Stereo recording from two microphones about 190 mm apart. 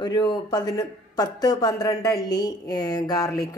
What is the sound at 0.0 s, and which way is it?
A woman's voice, 25° left (ahead or behind).